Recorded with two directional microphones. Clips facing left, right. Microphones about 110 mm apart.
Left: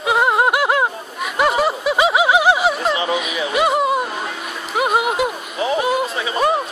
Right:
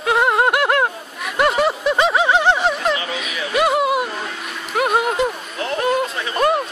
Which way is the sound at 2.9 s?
20° left (ahead or behind).